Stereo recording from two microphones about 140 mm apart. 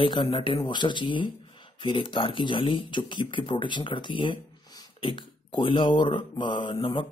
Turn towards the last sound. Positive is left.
turn(degrees=40)  # may be behind; listen again after turning